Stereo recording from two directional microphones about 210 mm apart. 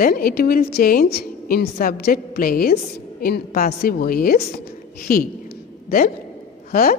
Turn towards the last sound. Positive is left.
turn(degrees=45)  # may be behind; listen again after turning